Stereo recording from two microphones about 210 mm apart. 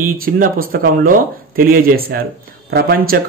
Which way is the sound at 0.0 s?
45° right (ahead or behind).